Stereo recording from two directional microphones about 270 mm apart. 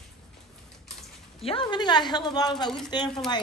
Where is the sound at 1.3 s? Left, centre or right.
Left.